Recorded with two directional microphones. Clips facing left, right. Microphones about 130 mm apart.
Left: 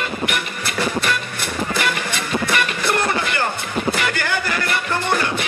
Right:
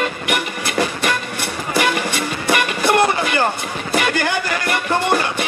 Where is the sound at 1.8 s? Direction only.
15° right (ahead or behind).